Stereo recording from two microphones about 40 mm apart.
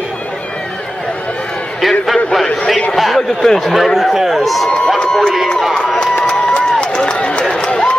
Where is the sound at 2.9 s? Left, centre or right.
Centre.